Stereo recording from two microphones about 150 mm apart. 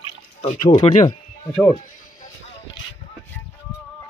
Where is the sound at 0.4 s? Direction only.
50° left (ahead or behind).